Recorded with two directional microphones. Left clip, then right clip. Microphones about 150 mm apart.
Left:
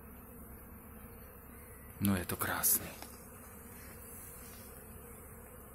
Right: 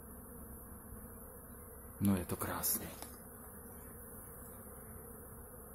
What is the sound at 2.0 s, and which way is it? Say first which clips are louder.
Speech: left 2 dB; 15° right (ahead or behind).